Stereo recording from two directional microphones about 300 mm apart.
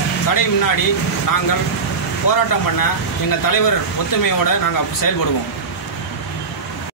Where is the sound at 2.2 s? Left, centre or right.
Left.